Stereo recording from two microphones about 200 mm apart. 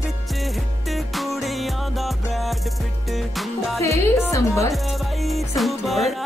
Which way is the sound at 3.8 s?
15° left (ahead or behind).